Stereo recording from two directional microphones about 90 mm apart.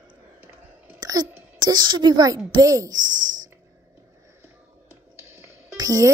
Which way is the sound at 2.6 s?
40° right (ahead or behind).